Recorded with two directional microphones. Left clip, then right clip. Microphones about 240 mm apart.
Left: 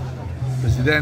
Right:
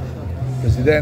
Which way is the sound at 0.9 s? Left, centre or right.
Centre.